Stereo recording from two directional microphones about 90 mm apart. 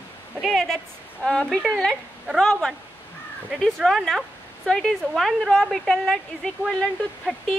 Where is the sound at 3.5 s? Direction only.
Centre (ahead or behind).